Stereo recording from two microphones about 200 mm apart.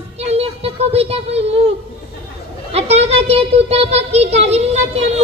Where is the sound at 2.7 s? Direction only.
30° right (ahead or behind).